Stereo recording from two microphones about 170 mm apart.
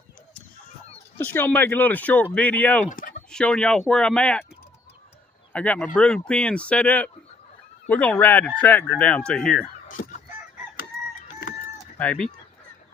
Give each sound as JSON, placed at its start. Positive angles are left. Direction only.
{"t": 1.1, "sound": "speech", "side_deg": 10}
{"t": 2.9, "sound": "fowl", "side_deg": 55}
{"t": 3.3, "sound": "speech", "side_deg": 5}
{"t": 5.5, "sound": "speech", "side_deg": 10}
{"t": 9.8, "sound": "fowl", "side_deg": 50}
{"t": 11.8, "sound": "a sound", "side_deg": 5}